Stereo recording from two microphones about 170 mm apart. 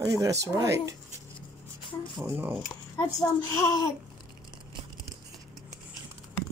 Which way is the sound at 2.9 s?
20° left (ahead or behind).